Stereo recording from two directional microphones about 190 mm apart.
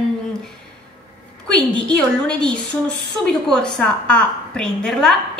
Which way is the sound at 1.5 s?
5° left (ahead or behind).